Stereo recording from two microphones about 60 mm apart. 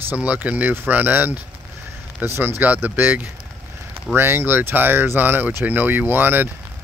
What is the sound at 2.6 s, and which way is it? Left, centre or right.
Speech, right.